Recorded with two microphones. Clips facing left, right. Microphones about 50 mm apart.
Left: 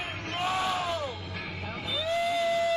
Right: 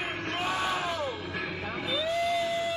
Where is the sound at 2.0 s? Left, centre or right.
Centre.